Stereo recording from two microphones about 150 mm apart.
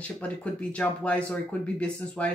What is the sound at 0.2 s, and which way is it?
Speech, 10° left (ahead or behind).